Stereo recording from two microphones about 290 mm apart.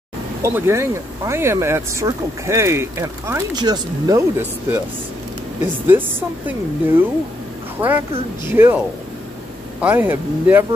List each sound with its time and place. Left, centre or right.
0.4 s speech: centre
5.9 s speech: centre
8.5 s speech: centre